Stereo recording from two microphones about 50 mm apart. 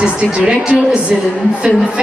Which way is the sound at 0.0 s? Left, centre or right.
Right.